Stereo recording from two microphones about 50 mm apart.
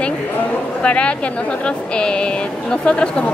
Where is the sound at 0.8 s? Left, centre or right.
Left.